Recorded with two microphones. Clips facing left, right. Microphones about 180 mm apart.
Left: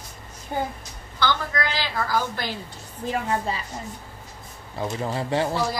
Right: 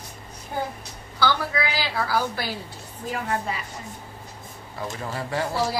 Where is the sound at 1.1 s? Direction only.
10° right (ahead or behind).